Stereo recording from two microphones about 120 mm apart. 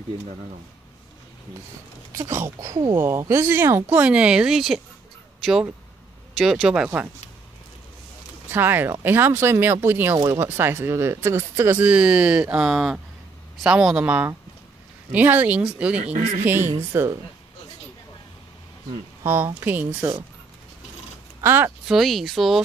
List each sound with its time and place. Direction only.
2.1 s speech: 25° right (ahead or behind); by 6.9 s 5° right (ahead or behind)
8.5 s speech: 15° right (ahead or behind)
10.1 s speech: 35° right (ahead or behind)
10.4 s speech: 20° right (ahead or behind)
16.1 s a man's voice: 70° right (ahead or behind)
16.9 s speech: 20° right (ahead or behind)
19.2 s speech: 20° right (ahead or behind)
21.4 s speech: 20° right (ahead or behind)
21.8 s speech: centre (ahead or behind)